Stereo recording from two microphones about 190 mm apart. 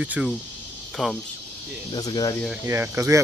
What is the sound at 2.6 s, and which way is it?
Speech, 15° right (ahead or behind).